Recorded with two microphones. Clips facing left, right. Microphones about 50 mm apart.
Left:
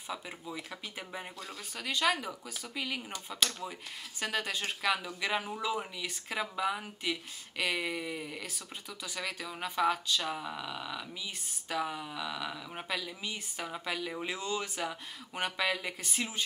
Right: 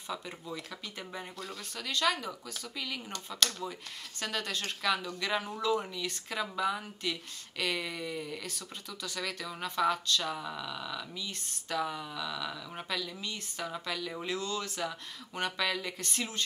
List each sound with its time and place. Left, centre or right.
0.1 s speech: centre